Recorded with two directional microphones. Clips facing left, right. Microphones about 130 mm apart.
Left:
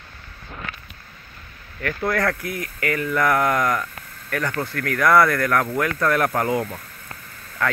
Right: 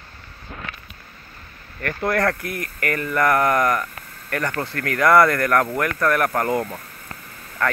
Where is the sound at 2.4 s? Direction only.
65° right (ahead or behind).